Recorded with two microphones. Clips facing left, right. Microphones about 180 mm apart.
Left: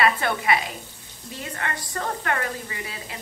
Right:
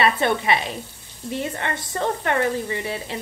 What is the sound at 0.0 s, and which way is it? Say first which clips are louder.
A woman's voice: right 3 dB; 25° right (ahead or behind).